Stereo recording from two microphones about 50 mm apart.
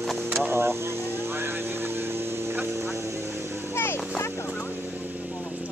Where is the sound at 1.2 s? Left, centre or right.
Right.